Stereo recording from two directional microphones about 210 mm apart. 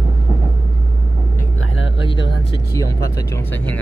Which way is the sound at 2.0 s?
25° left (ahead or behind).